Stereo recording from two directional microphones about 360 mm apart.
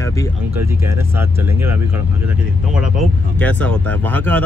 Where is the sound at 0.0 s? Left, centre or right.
Centre.